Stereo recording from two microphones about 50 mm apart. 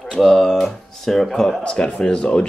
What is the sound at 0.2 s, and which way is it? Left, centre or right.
A man's voice, centre.